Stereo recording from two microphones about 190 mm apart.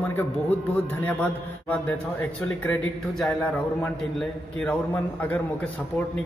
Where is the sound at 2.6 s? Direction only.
5° left (ahead or behind).